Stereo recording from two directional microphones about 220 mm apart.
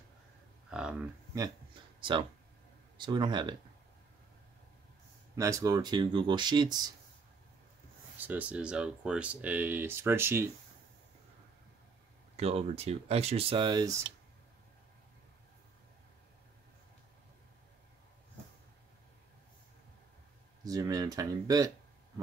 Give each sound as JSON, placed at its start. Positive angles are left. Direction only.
{"t": 0.7, "sound": "a sound", "side_deg": -5}
{"t": 3.0, "sound": "speech", "side_deg": -20}
{"t": 5.3, "sound": "speech", "side_deg": -15}
{"t": 8.2, "sound": "speech", "side_deg": -5}
{"t": 12.4, "sound": "speech", "side_deg": -30}
{"t": 20.6, "sound": "speech", "side_deg": -15}